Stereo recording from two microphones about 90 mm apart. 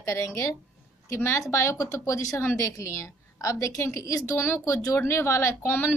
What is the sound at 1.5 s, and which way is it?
A woman's voice, 35° left (ahead or behind).